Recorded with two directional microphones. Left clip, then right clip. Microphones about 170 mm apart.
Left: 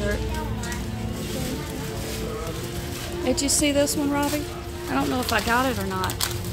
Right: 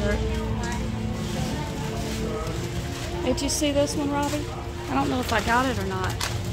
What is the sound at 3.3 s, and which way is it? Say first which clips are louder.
Speech: left 2 dB; 20° left (ahead or behind).